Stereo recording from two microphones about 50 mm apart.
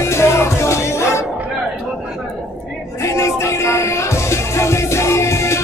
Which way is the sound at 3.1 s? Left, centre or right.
Left.